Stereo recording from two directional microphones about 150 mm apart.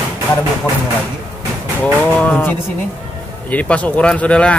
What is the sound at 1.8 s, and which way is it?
Speech, 10° left (ahead or behind).